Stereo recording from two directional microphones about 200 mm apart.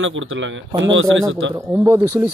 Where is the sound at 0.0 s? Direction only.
75° right (ahead or behind).